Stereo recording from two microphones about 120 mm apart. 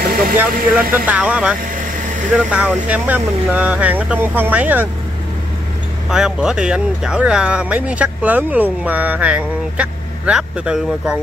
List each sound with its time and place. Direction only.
0.4 s speech: 15° right (ahead or behind)
1.8 s vehicle: 90° right
2.3 s speech: 10° right (ahead or behind)
6.0 s speech: 5° right (ahead or behind)